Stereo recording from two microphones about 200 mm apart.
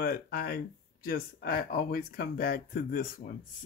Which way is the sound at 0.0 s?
50° left (ahead or behind).